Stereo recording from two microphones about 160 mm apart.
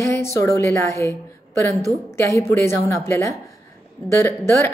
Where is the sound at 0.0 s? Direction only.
15° left (ahead or behind).